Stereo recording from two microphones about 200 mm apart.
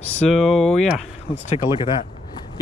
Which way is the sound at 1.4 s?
35° left (ahead or behind).